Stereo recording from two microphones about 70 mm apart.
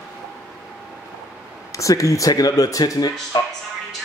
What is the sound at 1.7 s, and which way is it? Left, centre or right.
Speech, left.